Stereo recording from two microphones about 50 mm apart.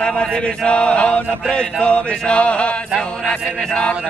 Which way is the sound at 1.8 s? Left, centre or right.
Left.